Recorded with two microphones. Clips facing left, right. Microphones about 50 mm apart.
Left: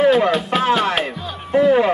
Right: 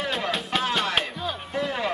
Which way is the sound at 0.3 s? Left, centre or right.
Centre.